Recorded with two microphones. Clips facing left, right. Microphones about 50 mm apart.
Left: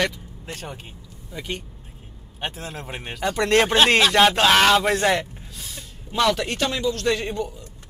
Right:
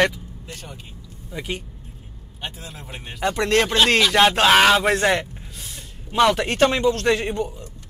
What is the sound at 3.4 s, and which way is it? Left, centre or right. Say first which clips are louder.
Speech: left 1 dB; centre.